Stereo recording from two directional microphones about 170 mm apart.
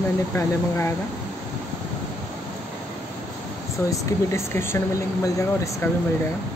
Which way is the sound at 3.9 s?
15° left (ahead or behind).